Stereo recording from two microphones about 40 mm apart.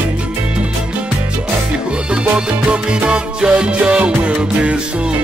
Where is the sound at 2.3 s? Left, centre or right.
Right.